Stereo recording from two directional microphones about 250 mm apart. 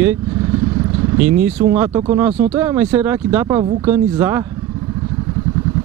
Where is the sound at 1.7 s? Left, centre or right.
Centre.